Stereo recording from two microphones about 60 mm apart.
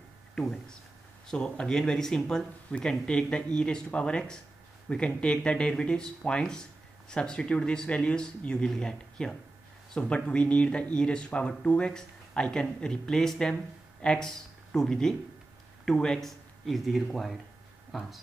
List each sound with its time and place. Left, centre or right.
0.4 s speech: centre